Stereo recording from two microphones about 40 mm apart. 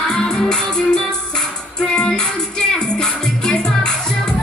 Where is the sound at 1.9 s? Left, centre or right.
Centre.